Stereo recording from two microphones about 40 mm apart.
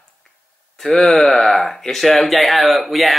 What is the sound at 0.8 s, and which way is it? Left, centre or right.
Speech, centre.